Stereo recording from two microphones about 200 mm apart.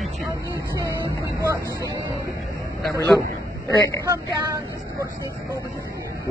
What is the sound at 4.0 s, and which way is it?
Speech, 15° right (ahead or behind).